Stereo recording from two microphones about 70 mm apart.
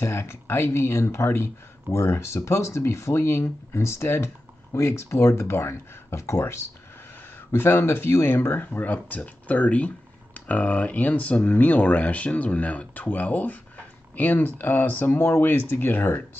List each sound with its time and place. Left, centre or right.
0.0 s speech: left